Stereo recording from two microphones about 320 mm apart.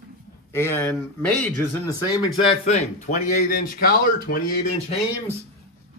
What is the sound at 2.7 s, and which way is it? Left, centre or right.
Speech, left.